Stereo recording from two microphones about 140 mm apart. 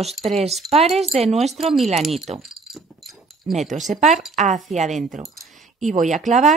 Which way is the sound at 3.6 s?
60° right (ahead or behind).